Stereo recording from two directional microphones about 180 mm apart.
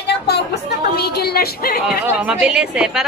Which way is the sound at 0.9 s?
60° left (ahead or behind).